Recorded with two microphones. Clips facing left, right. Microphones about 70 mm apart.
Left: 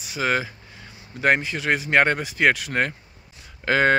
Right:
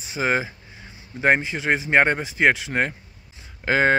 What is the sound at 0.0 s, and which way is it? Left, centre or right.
Speech, right.